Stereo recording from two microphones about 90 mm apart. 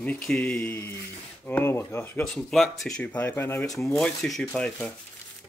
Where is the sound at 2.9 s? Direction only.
15° left (ahead or behind).